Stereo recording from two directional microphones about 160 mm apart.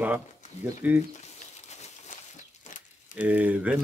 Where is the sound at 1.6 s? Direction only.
45° left (ahead or behind).